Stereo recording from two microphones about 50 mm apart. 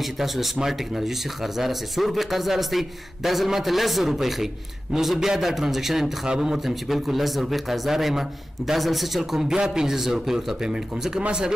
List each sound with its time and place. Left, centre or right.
0.0 s a man's voice: centre
6.6 s a man's voice: centre